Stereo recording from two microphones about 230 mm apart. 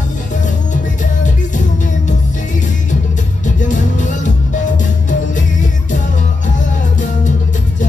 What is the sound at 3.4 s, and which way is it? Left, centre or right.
Music, left.